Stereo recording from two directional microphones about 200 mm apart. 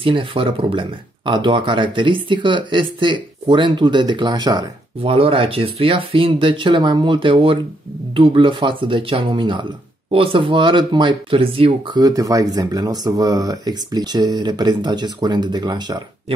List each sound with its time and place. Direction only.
0.0 s speech: 25° right (ahead or behind)